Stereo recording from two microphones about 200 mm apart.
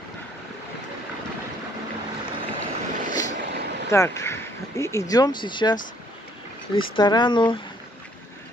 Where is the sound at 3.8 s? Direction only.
15° left (ahead or behind).